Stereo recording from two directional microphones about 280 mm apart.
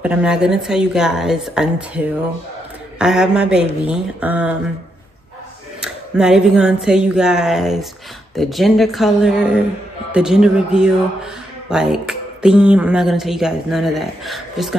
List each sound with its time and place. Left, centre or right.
0.0 s speech: centre
5.8 s speech: centre